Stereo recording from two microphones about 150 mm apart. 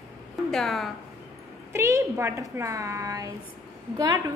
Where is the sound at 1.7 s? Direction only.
20° right (ahead or behind).